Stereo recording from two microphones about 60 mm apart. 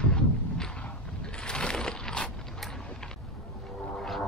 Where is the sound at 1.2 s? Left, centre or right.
Centre.